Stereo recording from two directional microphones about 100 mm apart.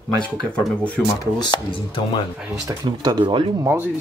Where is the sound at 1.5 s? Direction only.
55° left (ahead or behind).